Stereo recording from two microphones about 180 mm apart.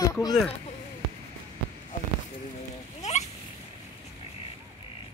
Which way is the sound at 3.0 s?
40° left (ahead or behind).